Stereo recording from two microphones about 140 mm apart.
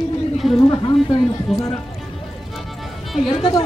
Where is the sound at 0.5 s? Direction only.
35° left (ahead or behind).